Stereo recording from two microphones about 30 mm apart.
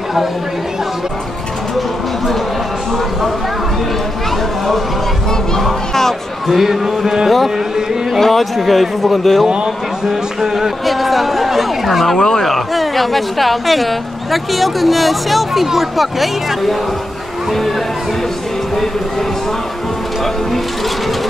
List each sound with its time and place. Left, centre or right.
6.4 s speech: centre
8.2 s speech: centre
10.0 s speech: centre
10.9 s a sound: centre
12.2 s speech: left
12.4 s speech: centre